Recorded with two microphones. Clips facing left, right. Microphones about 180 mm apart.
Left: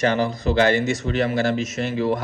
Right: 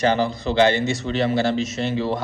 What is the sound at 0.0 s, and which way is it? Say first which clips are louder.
A man's voice: even; 30° right (ahead or behind).